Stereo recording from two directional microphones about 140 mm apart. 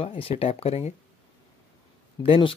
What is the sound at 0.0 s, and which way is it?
Speech, 45° left (ahead or behind).